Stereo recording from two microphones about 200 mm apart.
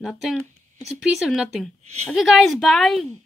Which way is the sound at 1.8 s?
35° right (ahead or behind).